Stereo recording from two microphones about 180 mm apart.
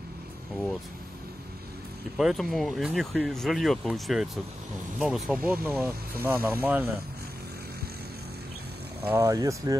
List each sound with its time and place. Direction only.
2.1 s speech: centre (ahead or behind)
9.0 s speech: 15° right (ahead or behind)